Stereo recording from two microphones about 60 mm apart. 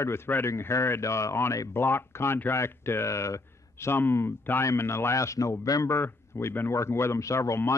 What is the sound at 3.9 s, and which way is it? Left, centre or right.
Speech, left.